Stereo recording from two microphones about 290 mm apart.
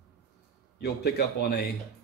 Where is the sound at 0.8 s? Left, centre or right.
Left.